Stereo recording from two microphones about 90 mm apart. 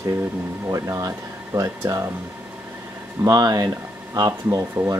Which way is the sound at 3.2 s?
40° right (ahead or behind).